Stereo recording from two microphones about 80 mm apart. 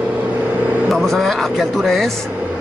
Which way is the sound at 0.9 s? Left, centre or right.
Centre.